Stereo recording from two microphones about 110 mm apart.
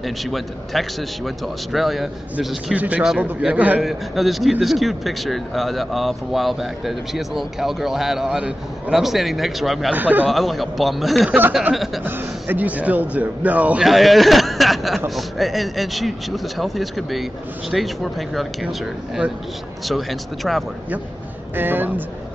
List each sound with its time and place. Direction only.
0.0 s a man's voice: centre (ahead or behind)
2.3 s speech: 15° right (ahead or behind)
3.8 s a man's voice: centre (ahead or behind)
9.9 s speech: 15° right (ahead or behind)
10.2 s a man's voice: centre (ahead or behind)
11.2 s speech: 15° right (ahead or behind)
11.7 s a man's voice: centre (ahead or behind)
12.0 s speech: 20° right (ahead or behind)
13.8 s a man's voice: centre (ahead or behind)
21.5 s speech: 15° right (ahead or behind)